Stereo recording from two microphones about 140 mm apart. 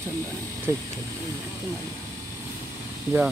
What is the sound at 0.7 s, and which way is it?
Speech, 20° right (ahead or behind).